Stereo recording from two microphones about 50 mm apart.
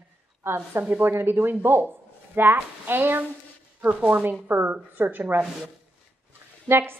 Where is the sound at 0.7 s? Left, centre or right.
Right.